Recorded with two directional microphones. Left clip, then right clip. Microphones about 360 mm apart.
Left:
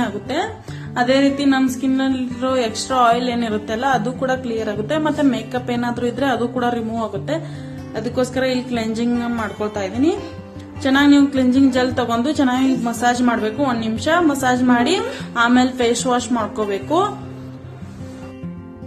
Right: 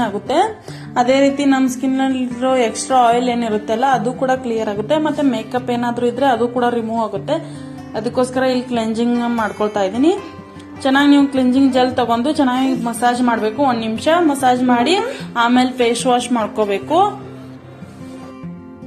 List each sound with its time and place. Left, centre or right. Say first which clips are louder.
0.0 s speech: right 6 dB; centre